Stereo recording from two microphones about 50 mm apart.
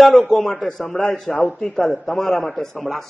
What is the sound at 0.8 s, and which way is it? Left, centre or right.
Speech, left.